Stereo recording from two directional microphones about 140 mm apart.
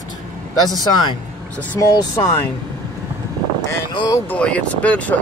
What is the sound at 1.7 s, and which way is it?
Speech, 25° left (ahead or behind).